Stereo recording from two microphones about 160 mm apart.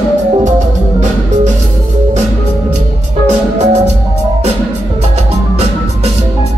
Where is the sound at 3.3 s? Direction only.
45° right (ahead or behind).